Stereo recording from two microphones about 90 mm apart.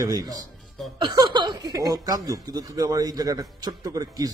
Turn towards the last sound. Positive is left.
turn(degrees=-45)  # may be behind; listen again after turning